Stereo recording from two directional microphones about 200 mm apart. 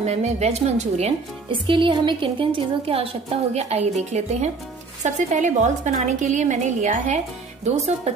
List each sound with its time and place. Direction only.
0.0 s speech: 35° right (ahead or behind)